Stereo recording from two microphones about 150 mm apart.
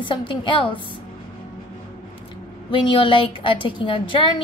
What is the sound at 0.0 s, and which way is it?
Speech, 35° left (ahead or behind).